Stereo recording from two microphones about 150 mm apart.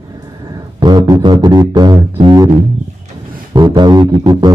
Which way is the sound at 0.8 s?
25° right (ahead or behind).